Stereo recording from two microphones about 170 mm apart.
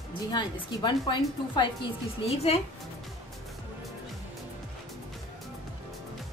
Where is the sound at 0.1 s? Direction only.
25° left (ahead or behind).